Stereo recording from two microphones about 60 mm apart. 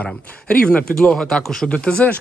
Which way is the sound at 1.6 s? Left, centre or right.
Centre.